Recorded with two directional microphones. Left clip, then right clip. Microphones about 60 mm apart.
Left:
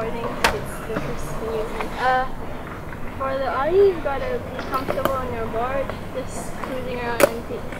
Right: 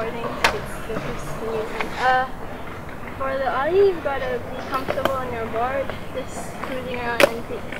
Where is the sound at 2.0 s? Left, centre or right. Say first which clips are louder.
Right 1 dB; centre.